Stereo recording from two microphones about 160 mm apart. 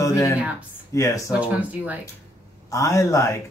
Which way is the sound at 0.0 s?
20° left (ahead or behind).